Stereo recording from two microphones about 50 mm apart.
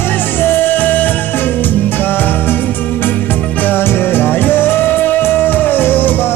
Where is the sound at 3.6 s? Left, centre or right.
Left.